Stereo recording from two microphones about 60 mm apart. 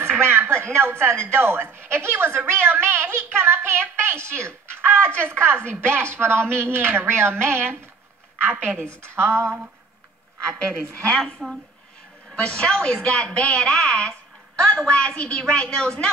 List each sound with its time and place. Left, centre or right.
0.0 s a woman's voice: right
9.1 s a sound: right
10.7 s a woman's voice: centre
12.4 s a woman's voice: centre